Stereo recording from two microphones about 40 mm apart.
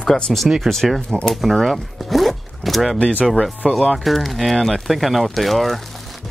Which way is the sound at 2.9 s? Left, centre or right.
Left.